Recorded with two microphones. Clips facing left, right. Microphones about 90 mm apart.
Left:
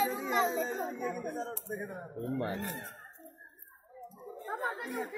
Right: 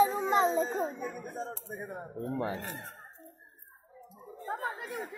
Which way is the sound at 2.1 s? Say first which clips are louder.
Right 1 dB; 5° right (ahead or behind).